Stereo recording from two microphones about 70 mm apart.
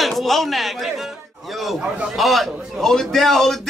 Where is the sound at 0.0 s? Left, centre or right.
Centre.